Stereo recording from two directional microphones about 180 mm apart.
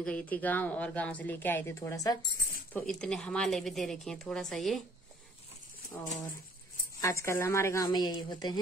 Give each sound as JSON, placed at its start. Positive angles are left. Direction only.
{"t": 0.0, "sound": "a woman's voice", "side_deg": 10}
{"t": 2.7, "sound": "a woman's voice", "side_deg": 5}
{"t": 7.0, "sound": "a woman's voice", "side_deg": 15}